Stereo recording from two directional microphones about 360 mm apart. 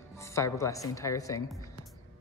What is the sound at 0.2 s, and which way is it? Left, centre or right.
Speech, centre.